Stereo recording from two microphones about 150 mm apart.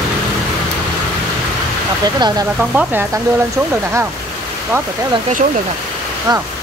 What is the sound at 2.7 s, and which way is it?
Speech, 10° right (ahead or behind).